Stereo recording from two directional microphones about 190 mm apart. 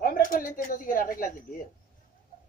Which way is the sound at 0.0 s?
45° left (ahead or behind).